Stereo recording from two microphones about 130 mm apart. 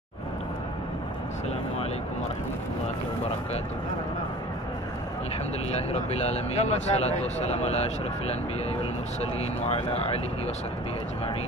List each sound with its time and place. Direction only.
5.7 s speech: 55° left (ahead or behind)
9.2 s speech: 55° left (ahead or behind)